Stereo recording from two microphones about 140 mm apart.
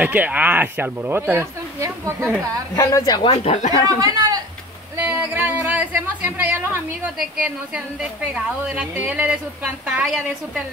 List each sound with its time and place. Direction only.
0.0 s a woman's voice: 10° right (ahead or behind)
2.7 s speech: 20° left (ahead or behind); by 3.8 s 50° left (ahead or behind)
3.8 s speech: 30° right (ahead or behind)
4.9 s a woman's voice: 15° right (ahead or behind)